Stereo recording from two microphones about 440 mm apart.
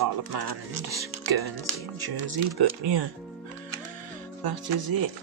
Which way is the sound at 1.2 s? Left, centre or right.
Right.